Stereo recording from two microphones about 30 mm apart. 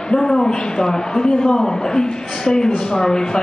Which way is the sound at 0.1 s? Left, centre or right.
Centre.